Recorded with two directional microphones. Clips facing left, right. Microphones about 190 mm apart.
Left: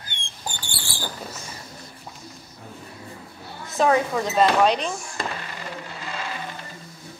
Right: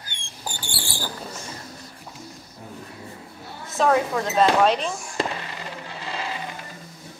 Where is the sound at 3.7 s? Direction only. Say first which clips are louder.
Even; centre (ahead or behind).